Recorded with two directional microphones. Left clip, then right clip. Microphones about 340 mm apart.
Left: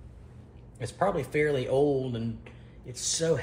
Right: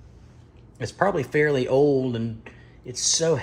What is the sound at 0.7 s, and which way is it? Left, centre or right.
Speech, right.